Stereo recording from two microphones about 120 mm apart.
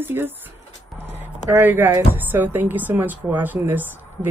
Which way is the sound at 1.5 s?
15° right (ahead or behind).